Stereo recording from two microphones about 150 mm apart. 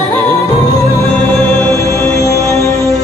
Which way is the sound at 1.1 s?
5° left (ahead or behind).